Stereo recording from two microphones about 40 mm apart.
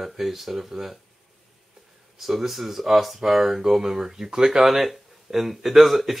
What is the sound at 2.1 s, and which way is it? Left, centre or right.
Speech, centre.